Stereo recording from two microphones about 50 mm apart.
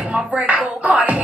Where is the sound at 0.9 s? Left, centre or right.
Centre.